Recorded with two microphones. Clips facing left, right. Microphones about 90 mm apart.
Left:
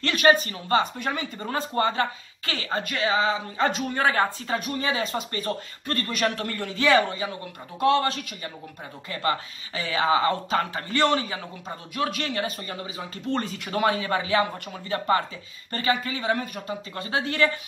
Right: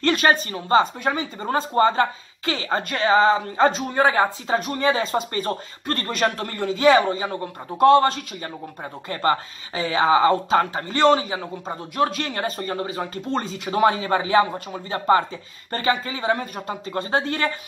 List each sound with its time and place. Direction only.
0.0 s speech: 35° right (ahead or behind)
3.6 s speech: 25° right (ahead or behind)
4.6 s speech: 40° right (ahead or behind)
7.8 s speech: 35° right (ahead or behind)
9.1 s speech: 40° right (ahead or behind)
11.9 s speech: 40° right (ahead or behind)
13.3 s speech: 25° right (ahead or behind)